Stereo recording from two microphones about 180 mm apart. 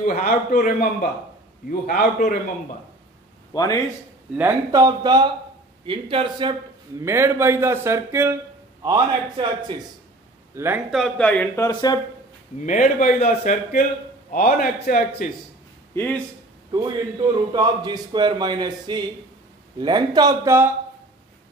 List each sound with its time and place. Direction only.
0.0 s a man's voice: 55° left (ahead or behind)
3.5 s a man's voice: 25° left (ahead or behind)
4.4 s speech: 15° right (ahead or behind)
7.0 s a man's voice: 15° right (ahead or behind)
10.5 s a man's voice: 15° right (ahead or behind)
10.9 s speech: 5° left (ahead or behind); by 12.0 s 20° left (ahead or behind)
12.6 s a man's voice: 45° left (ahead or behind)
15.9 s speech: 10° left (ahead or behind)
17.5 s speech: 25° right (ahead or behind)